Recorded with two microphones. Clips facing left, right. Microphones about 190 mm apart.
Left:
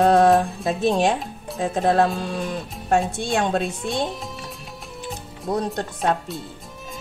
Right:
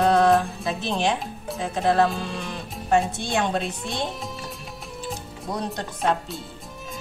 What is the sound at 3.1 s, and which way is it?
Speech, 50° left (ahead or behind).